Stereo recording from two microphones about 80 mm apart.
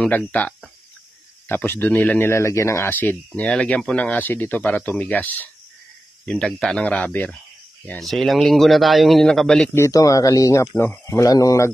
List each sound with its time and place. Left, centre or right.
0.1 s speech: left
2.9 s speech: left
6.2 s speech: centre
8.0 s a man's voice: centre
9.8 s speech: left
11.2 s speech: left